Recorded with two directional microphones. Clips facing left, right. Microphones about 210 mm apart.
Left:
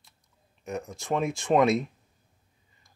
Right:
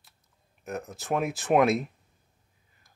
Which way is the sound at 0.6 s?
Centre (ahead or behind).